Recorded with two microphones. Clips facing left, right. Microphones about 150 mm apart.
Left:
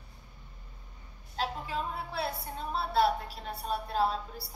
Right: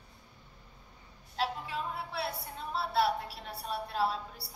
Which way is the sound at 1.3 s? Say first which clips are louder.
Left 1 dB; 35° left (ahead or behind).